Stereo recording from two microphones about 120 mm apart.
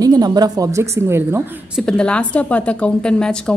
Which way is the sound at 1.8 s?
5° left (ahead or behind).